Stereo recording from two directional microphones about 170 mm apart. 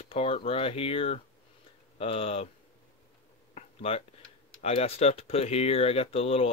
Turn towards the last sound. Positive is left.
turn(degrees=35)  # may be behind; listen again after turning